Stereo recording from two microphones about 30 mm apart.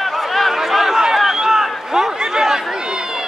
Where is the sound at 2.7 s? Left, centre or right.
Right.